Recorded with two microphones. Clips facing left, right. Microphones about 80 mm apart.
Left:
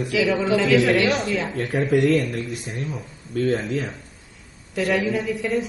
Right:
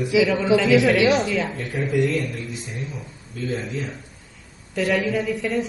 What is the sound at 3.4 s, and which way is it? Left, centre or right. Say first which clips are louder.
Speech: left 5 dB; left.